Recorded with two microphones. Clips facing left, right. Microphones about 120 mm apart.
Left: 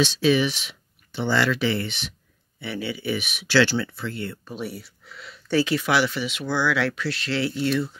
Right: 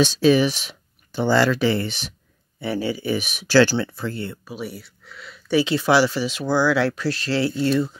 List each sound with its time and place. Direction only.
0.0 s speech: 40° right (ahead or behind)
4.5 s speech: centre (ahead or behind)
5.5 s speech: 20° right (ahead or behind)
5.8 s speech: 30° right (ahead or behind)